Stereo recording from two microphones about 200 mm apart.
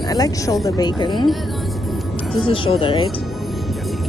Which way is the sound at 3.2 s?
Centre (ahead or behind).